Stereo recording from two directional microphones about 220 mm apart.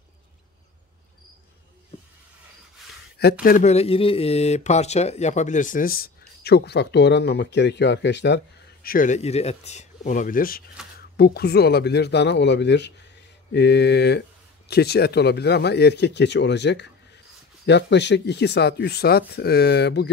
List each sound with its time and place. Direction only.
3.4 s speech: 35° left (ahead or behind); by 8.4 s 50° left (ahead or behind)
8.8 s speech: 35° left (ahead or behind)